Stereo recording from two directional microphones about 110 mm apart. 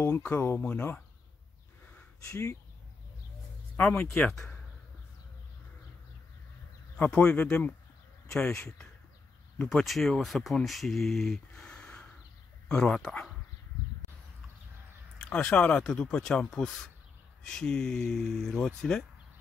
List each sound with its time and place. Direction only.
0.2 s speech: 20° left (ahead or behind)
3.8 s speech: 5° left (ahead or behind)
7.0 s speech: 10° left (ahead or behind)
15.1 s speech: 10° left (ahead or behind)